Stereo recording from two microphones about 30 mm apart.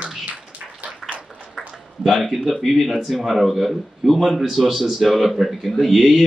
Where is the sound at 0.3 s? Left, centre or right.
Right.